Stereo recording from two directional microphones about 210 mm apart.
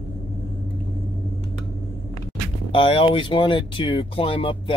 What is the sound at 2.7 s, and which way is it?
Speech, 25° left (ahead or behind).